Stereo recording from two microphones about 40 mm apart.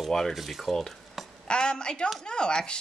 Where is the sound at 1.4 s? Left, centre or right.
Left.